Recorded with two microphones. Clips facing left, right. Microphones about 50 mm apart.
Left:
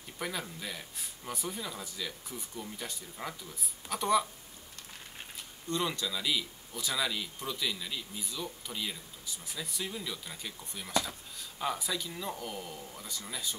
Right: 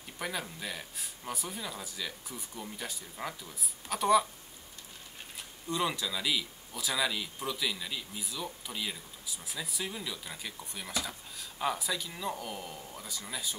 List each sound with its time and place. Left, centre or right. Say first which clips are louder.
0.2 s speech: right 1 dB; centre
5.7 s speech: right 1 dB; centre